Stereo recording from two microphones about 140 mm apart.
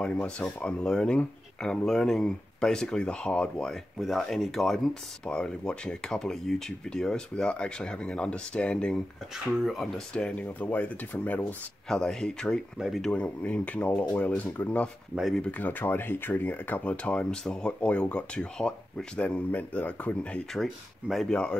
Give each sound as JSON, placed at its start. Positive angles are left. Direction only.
{"t": 0.0, "sound": "speech", "side_deg": 10}
{"t": 13.1, "sound": "speech", "side_deg": 10}
{"t": 15.1, "sound": "speech", "side_deg": 0}
{"t": 15.5, "sound": "speech", "side_deg": 15}
{"t": 20.5, "sound": "speech", "side_deg": 0}